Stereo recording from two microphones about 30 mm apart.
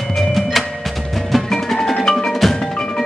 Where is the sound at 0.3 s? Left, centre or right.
Centre.